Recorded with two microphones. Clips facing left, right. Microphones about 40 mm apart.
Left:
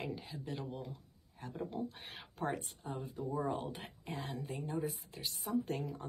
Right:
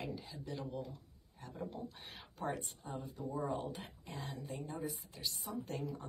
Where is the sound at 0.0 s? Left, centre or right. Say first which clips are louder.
Left 2 dB; left.